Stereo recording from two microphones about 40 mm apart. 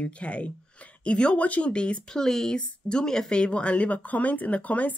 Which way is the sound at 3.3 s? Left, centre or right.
Left.